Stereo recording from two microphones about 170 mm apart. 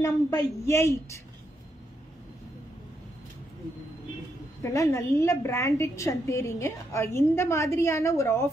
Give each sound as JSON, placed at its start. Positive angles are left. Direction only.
{"t": 0.0, "sound": "a woman's voice", "side_deg": 15}
{"t": 4.6, "sound": "a woman's voice", "side_deg": 15}